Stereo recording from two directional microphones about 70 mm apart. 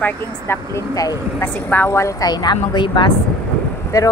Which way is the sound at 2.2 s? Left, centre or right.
Left.